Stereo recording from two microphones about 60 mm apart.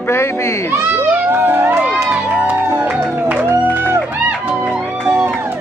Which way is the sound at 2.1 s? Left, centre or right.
Right.